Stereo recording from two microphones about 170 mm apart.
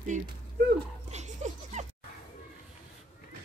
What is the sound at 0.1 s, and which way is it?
Speech, 45° right (ahead or behind).